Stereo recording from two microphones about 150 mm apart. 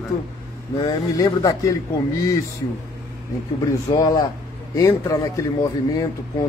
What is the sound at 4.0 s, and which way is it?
A man's voice, 25° left (ahead or behind).